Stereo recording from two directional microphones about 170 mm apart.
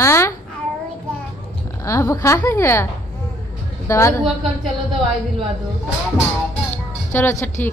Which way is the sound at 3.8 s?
15° left (ahead or behind).